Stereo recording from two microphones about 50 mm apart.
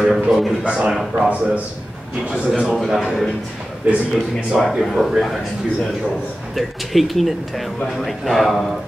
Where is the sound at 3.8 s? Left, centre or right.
Right.